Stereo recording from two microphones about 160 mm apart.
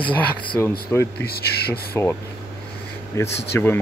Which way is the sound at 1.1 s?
80° left.